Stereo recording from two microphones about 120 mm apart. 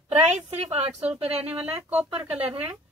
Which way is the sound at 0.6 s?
60° right (ahead or behind).